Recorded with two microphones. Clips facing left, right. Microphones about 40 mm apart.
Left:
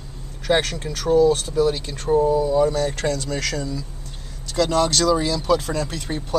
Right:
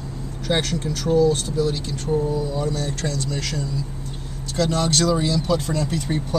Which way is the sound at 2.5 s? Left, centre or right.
Left.